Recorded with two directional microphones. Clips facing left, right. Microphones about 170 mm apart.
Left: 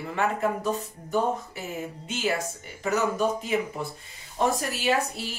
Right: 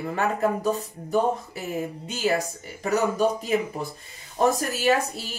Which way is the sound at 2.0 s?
40° right (ahead or behind).